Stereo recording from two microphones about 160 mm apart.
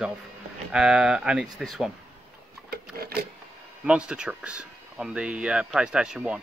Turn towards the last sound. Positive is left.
turn(degrees=-5)  # may be behind; listen again after turning